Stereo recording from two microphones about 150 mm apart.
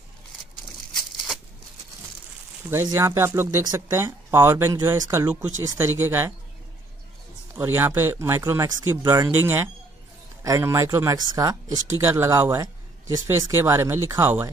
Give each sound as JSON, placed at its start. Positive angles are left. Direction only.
{"t": 0.9, "sound": "a sound", "side_deg": 0}
{"t": 2.7, "sound": "speech", "side_deg": -15}
{"t": 7.5, "sound": "speech", "side_deg": -15}